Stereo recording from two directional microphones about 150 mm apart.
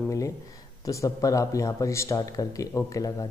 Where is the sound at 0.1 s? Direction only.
20° left (ahead or behind).